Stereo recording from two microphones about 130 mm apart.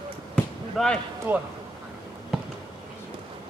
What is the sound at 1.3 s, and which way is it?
Speech, 15° right (ahead or behind).